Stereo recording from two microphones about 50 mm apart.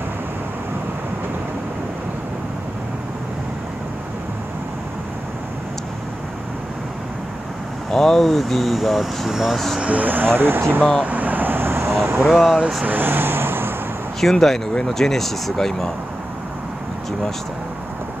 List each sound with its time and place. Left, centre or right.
7.9 s speech: centre
9.3 s speech: centre
9.8 s speech: right
11.1 s vehicle: right
12.2 s speech: centre
12.8 s vehicle: right
14.2 s speech: centre